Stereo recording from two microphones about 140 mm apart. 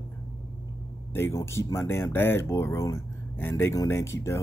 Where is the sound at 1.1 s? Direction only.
20° left (ahead or behind).